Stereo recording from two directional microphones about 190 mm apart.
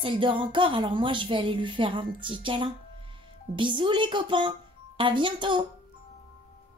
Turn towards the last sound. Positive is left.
turn(degrees=-25)  # may be behind; listen again after turning